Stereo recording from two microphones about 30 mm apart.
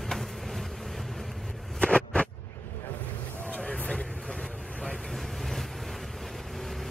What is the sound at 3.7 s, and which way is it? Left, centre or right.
Vehicle, left.